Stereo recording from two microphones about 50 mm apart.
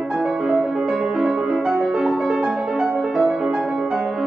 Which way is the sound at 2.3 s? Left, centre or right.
Centre.